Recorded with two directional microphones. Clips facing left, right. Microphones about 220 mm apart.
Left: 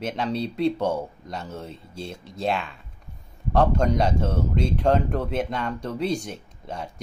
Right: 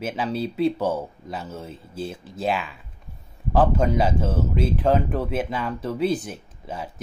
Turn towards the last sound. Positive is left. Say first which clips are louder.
# right 1 dB
turn(degrees=-5)  # may be behind; listen again after turning